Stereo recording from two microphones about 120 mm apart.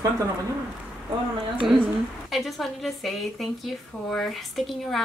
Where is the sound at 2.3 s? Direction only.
Centre (ahead or behind).